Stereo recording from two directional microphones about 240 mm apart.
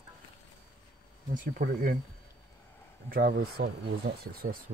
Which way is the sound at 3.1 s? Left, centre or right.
Right.